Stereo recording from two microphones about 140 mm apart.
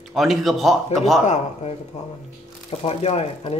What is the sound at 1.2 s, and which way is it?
Speech, 55° left (ahead or behind).